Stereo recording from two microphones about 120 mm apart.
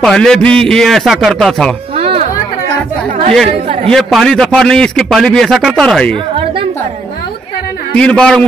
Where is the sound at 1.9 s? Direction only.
55° right (ahead or behind).